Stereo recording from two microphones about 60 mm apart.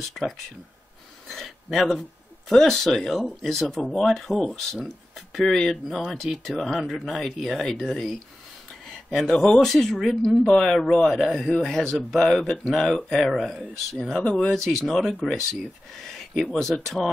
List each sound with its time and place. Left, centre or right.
0.2 s speech: centre
1.2 s a sound: centre
2.5 s speech: centre
14.1 s speech: centre
14.5 s speech: centre